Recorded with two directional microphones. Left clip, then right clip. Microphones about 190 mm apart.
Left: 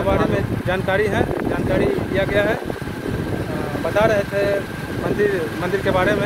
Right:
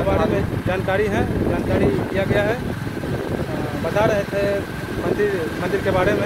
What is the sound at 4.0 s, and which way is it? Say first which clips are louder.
Speech: left 2 dB; 20° left (ahead or behind).